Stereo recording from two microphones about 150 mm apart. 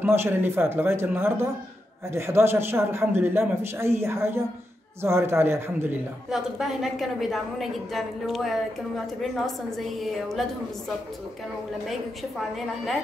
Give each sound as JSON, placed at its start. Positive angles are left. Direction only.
{"t": 0.0, "sound": "a man's voice", "side_deg": -15}
{"t": 6.3, "sound": "a woman's voice", "side_deg": 0}
{"t": 11.9, "sound": "a woman's voice", "side_deg": 0}